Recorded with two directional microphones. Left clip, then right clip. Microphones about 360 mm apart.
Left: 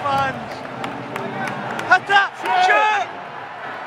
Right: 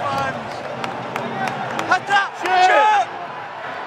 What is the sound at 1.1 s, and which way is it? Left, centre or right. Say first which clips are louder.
Run: right 2 dB; right.